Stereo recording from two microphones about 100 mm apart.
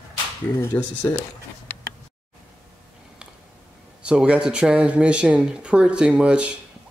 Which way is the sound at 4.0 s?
10° right (ahead or behind).